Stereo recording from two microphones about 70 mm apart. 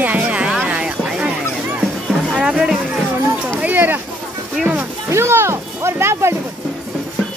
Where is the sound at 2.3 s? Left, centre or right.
Centre.